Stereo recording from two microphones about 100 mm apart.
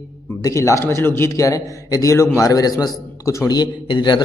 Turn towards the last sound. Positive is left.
turn(degrees=50)  # may be behind; listen again after turning